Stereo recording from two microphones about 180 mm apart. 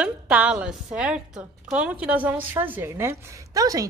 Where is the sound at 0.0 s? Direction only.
5° right (ahead or behind).